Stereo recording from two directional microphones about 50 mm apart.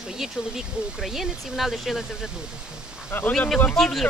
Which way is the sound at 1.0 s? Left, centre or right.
Centre.